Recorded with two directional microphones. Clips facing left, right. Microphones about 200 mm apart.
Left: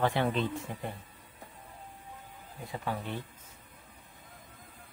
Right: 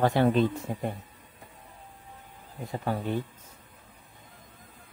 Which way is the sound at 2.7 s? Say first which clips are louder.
Right 6 dB; 40° right (ahead or behind).